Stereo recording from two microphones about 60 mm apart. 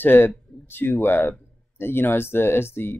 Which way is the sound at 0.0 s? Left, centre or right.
Left.